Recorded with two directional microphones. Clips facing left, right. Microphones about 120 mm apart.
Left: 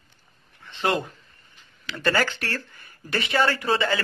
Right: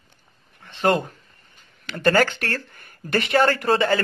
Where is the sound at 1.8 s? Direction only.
50° right (ahead or behind).